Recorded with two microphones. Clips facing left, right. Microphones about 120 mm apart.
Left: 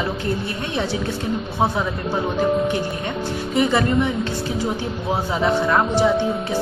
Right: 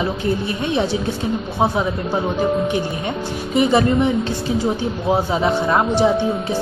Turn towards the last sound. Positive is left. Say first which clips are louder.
# right 1 dB
turn(degrees=-20)  # may be behind; listen again after turning